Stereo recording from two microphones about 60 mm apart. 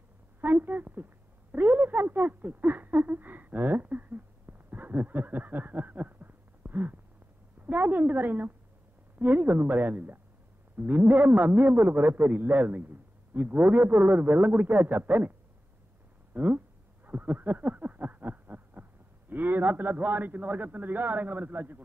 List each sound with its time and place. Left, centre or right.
0.4 s a woman's voice: right
16.3 s speech: right